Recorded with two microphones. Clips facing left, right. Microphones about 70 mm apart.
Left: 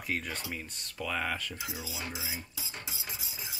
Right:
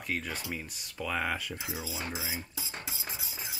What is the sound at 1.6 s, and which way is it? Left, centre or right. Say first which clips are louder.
Speech: right 2 dB; right.